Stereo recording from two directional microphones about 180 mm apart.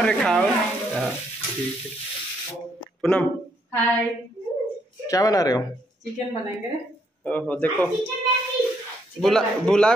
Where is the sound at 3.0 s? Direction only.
5° left (ahead or behind).